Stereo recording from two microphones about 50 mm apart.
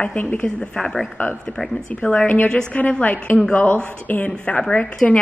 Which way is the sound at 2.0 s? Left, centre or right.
Centre.